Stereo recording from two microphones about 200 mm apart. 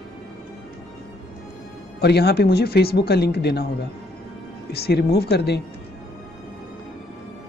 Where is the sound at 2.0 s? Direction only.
55° left (ahead or behind).